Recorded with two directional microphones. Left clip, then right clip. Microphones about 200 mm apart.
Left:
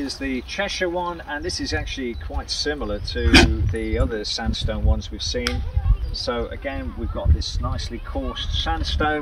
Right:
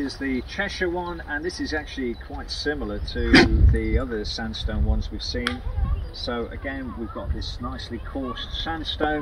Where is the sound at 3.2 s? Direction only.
55° left (ahead or behind).